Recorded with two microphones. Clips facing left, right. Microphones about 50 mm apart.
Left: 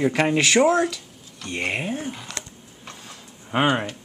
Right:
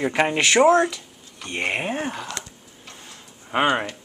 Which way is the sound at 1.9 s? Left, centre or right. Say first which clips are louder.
Right 3 dB; right.